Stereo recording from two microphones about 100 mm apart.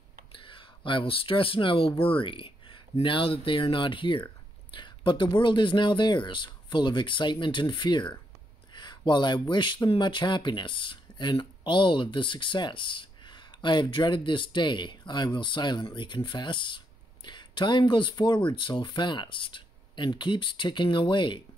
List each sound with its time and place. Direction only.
0.3 s speech: 60° left (ahead or behind)